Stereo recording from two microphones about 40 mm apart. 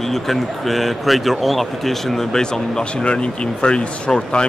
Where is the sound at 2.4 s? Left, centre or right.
Left.